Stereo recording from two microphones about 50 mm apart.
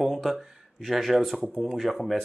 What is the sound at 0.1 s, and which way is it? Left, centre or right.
Speech, centre.